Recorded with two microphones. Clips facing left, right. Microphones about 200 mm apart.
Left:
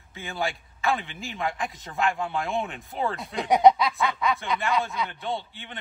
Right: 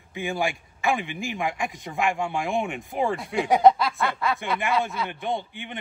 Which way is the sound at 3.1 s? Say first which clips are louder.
Right 2 dB; centre (ahead or behind).